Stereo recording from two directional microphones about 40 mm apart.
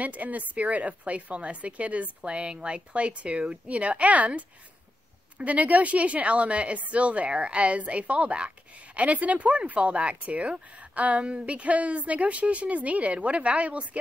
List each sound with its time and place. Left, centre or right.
0.0 s a woman's voice: right